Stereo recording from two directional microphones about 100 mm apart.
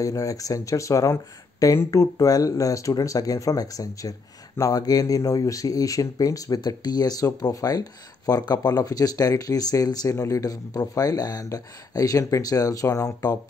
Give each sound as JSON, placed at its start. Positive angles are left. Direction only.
{"t": 0.0, "sound": "speech", "side_deg": 35}